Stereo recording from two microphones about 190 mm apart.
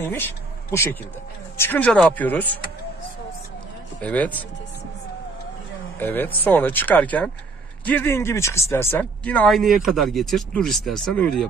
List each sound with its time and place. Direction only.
0.0 s speech: 10° left (ahead or behind)
4.0 s speech: 10° left (ahead or behind)
5.9 s speech: 10° left (ahead or behind)